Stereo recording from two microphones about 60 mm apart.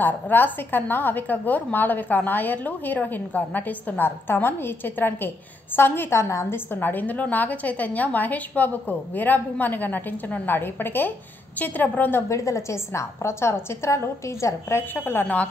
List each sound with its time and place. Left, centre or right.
0.0 s a woman's voice: left
6.1 s a woman's voice: left
6.5 s a woman's voice: left
12.3 s a woman's voice: left